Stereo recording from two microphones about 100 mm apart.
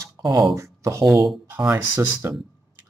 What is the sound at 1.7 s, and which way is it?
Speech, 25° right (ahead or behind).